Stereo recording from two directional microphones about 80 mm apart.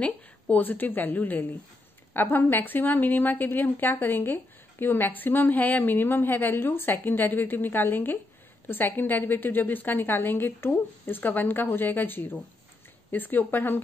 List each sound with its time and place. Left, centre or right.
0.0 s a woman's voice: left